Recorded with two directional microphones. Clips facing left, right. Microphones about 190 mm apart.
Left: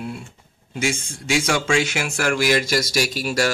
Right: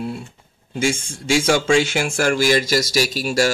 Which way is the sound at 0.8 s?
25° right (ahead or behind).